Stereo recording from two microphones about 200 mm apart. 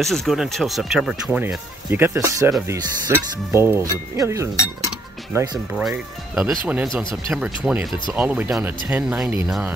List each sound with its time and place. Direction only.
0.0 s speech: centre (ahead or behind); by 5.6 s 15° right (ahead or behind)
5.8 s speech: 5° right (ahead or behind)